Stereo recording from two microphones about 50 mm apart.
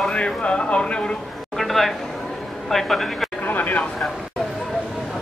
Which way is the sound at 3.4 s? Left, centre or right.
Left.